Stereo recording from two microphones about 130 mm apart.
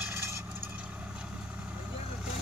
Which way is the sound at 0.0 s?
15° right (ahead or behind).